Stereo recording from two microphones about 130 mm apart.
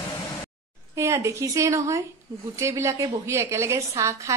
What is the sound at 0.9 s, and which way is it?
A woman's voice, 25° right (ahead or behind).